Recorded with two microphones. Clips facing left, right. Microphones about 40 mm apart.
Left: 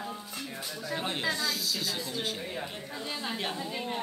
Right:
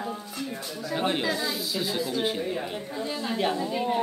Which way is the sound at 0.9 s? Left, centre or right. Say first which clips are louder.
Right 7 dB; right.